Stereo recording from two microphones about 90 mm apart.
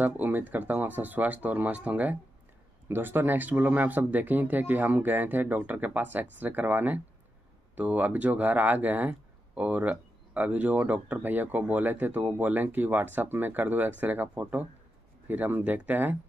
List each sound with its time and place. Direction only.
0.0 s speech: 20° right (ahead or behind)